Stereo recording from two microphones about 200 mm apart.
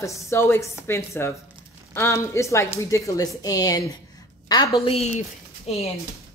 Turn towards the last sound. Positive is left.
turn(degrees=30)  # may be behind; listen again after turning